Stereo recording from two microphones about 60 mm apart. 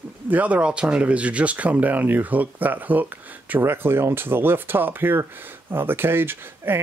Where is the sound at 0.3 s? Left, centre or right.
Right.